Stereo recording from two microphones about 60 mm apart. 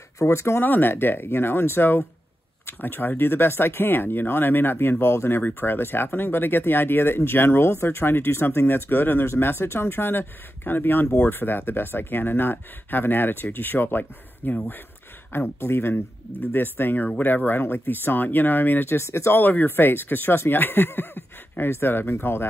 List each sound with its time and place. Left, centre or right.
0.2 s speech: left
0.7 s speech: left
15.3 s speech: left
18.9 s speech: left
19.3 s speech: left